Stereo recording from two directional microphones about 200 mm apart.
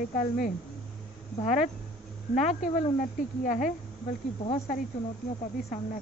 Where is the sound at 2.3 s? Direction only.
35° left (ahead or behind).